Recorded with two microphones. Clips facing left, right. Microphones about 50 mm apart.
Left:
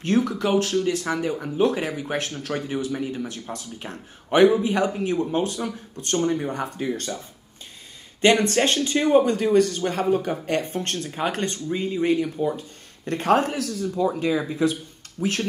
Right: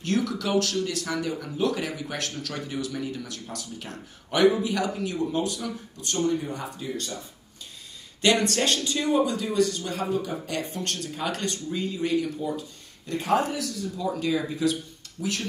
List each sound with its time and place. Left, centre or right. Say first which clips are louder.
0.0 s speech: left 5 dB; left
8.2 s speech: left 4 dB; left
13.9 s speech: left 4 dB; left
15.1 s speech: left 5 dB; left